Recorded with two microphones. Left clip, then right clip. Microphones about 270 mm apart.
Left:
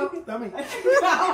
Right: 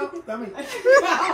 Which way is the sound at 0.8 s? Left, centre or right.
Right.